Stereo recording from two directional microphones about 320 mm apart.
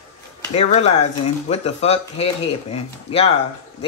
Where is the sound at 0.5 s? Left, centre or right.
Centre.